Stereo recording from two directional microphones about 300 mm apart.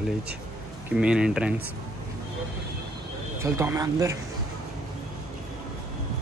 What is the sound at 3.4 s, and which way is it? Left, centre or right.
Speech, centre.